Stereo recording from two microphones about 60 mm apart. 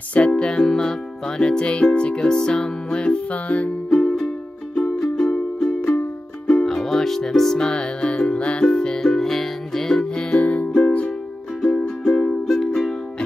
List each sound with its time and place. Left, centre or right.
0.1 s music: left
4.0 s music: centre
5.6 s music: centre
6.4 s music: centre
10.4 s music: left
11.7 s music: centre
12.5 s music: centre